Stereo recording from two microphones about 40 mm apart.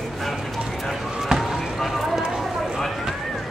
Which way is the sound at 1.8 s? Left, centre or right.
Centre.